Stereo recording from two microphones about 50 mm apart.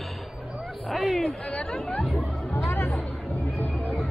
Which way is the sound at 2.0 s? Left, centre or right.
Centre.